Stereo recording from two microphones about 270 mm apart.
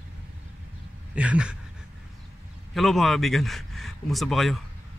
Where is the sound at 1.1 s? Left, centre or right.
Centre.